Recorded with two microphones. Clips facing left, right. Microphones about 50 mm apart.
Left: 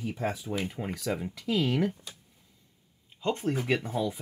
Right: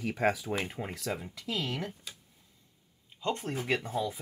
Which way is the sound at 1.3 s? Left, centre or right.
Centre.